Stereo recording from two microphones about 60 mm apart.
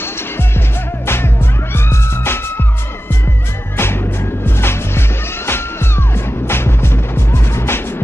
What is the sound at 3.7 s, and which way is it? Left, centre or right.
Music, left.